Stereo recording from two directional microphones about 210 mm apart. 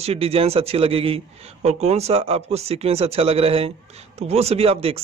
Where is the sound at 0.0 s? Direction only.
30° right (ahead or behind).